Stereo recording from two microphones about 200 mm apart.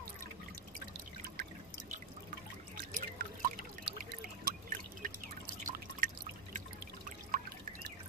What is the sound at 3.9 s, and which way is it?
Trickle, 45° right (ahead or behind).